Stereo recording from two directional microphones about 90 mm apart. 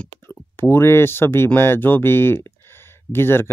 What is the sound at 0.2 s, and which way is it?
Speech, 25° left (ahead or behind).